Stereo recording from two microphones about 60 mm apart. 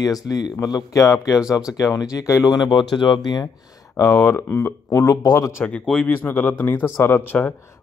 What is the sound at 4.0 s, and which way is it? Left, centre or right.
Speech, left.